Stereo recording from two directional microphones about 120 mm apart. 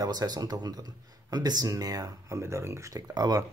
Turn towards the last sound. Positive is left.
turn(degrees=-30)  # may be behind; listen again after turning